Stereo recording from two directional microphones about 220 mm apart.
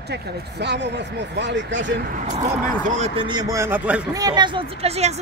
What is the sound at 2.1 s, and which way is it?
Speech, 35° right (ahead or behind).